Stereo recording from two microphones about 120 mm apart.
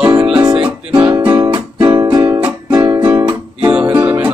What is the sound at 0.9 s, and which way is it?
Music, 40° right (ahead or behind).